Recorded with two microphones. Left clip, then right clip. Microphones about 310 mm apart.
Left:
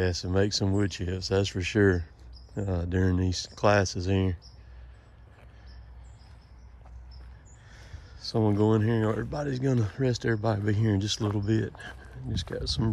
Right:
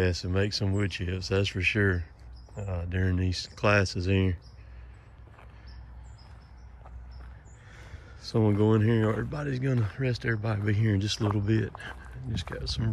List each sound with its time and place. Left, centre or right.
0.0 s speech: centre
2.5 s speech: left
2.9 s speech: centre
7.7 s speech: centre